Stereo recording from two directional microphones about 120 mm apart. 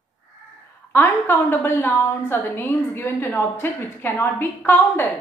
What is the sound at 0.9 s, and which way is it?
A woman's voice, 20° left (ahead or behind).